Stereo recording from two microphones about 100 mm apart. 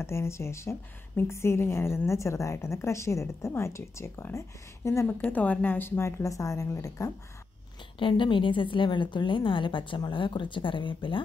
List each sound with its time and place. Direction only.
0.0 s a woman's voice: 25° left (ahead or behind)
5.2 s a woman's voice: 15° left (ahead or behind); by 7.1 s 35° left (ahead or behind)
8.0 s a woman's voice: 55° left (ahead or behind)